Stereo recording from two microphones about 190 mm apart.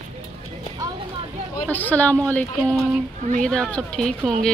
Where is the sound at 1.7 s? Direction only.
10° left (ahead or behind).